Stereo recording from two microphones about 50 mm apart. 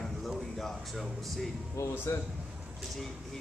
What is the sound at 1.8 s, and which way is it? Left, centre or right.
Speech, left.